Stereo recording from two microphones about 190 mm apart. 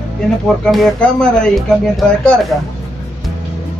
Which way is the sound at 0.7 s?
Centre (ahead or behind).